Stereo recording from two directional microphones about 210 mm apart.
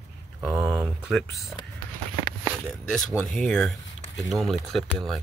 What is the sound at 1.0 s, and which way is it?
Speech, centre (ahead or behind).